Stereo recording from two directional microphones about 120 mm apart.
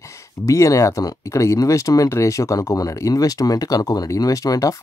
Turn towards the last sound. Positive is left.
turn(degrees=30)  # may be behind; listen again after turning